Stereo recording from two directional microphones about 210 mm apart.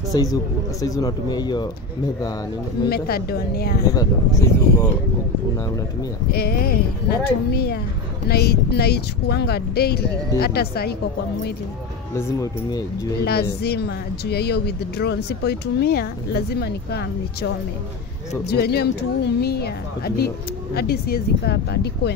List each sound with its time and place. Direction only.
0.1 s speech: 15° left (ahead or behind)
2.9 s speech: 45° left (ahead or behind)
3.9 s speech: 15° left (ahead or behind)
6.3 s speech: 45° left (ahead or behind)
12.2 s speech: 15° left (ahead or behind)
13.2 s speech: 50° left (ahead or behind)
18.5 s speech: 50° left (ahead or behind)